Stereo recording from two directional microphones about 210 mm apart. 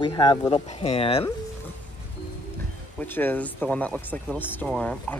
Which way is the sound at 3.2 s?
10° left (ahead or behind).